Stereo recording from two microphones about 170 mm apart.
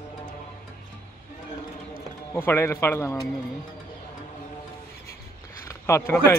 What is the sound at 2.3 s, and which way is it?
Speech, 15° left (ahead or behind).